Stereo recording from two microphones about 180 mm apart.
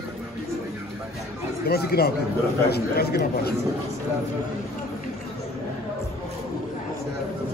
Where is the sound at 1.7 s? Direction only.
60° left (ahead or behind).